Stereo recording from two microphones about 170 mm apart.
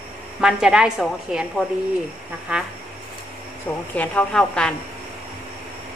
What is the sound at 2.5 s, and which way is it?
Speech, 5° right (ahead or behind).